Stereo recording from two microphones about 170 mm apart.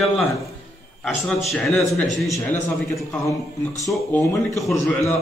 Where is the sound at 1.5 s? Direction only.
Centre (ahead or behind).